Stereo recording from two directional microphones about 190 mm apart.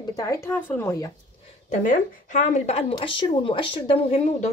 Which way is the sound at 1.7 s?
40° left (ahead or behind).